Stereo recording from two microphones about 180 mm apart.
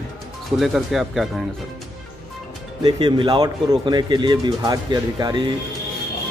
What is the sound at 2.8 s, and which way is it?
Speech, 25° right (ahead or behind).